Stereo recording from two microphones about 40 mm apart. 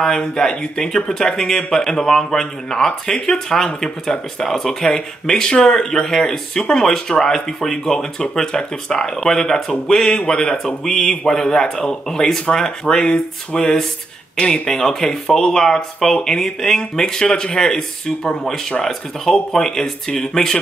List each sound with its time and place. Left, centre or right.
0.0 s speech: centre
18.9 s speech: centre